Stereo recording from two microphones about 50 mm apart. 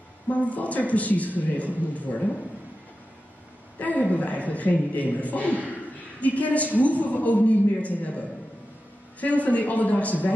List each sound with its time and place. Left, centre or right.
0.3 s a man's voice: left
3.7 s a man's voice: left